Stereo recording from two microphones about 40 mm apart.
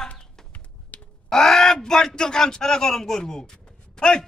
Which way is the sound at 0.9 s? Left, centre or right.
Left.